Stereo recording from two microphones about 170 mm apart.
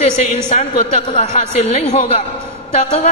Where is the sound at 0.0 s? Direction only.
40° left (ahead or behind).